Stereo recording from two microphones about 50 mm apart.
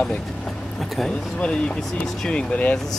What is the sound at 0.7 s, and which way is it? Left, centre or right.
Speech, centre.